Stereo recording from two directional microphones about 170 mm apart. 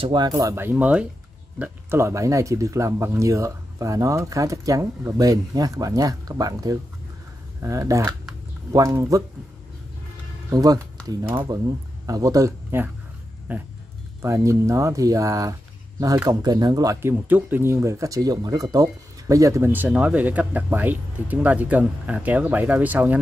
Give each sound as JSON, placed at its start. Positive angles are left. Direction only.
{"t": 0.0, "sound": "speech", "side_deg": -25}
{"t": 10.5, "sound": "speech", "side_deg": -20}